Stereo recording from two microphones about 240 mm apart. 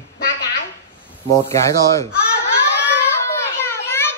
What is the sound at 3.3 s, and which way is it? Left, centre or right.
Children playing, centre.